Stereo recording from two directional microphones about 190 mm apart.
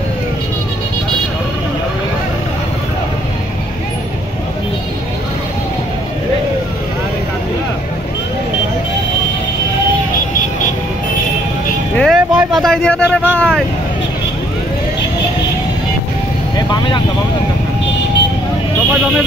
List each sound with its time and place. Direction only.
12.0 s vehicle: centre (ahead or behind)
16.5 s vehicle: 20° left (ahead or behind)